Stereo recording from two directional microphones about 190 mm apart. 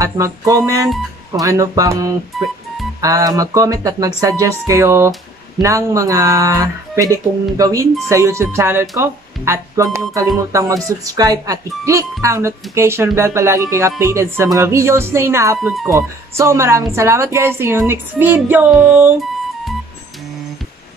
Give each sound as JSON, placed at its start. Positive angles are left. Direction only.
{"t": 0.0, "sound": "speech", "side_deg": -15}